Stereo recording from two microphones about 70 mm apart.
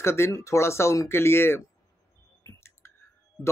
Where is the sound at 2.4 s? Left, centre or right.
Left.